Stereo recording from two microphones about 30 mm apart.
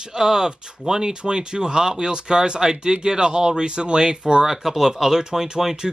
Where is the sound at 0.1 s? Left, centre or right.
Centre.